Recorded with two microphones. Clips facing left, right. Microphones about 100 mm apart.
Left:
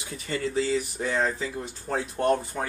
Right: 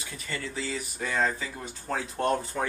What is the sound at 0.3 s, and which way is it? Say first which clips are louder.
Speech: left 8 dB; 25° left (ahead or behind).